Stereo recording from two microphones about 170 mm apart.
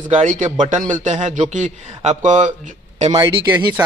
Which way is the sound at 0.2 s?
45° right (ahead or behind).